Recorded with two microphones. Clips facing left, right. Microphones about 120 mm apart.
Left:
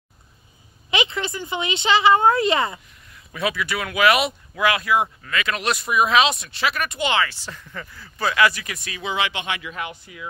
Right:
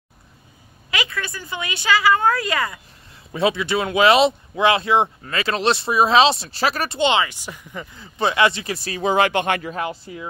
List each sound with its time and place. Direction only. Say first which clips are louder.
0.8 s speech: left 3 dB; 20° left (ahead or behind)
3.1 s speech: right 5 dB; 30° right (ahead or behind)